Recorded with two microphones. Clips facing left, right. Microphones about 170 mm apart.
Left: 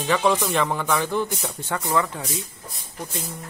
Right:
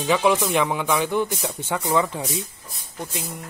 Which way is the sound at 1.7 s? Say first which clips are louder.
Right 2 dB; 15° right (ahead or behind).